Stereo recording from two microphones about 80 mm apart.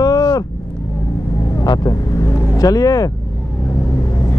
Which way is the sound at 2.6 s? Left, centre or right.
Left.